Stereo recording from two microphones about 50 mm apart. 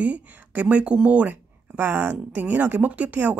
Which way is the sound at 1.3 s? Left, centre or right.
Right.